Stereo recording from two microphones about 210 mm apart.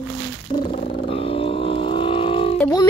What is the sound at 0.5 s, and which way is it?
Vehicle, 30° left (ahead or behind).